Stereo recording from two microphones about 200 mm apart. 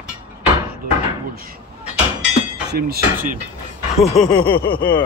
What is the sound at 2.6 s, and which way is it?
Speech, 50° right (ahead or behind).